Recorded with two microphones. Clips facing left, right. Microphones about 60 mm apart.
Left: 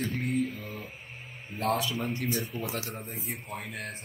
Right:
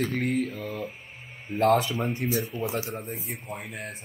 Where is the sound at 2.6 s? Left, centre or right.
Right.